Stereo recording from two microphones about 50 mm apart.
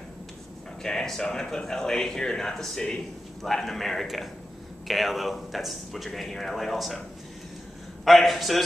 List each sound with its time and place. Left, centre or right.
0.8 s speech: centre
8.0 s speech: centre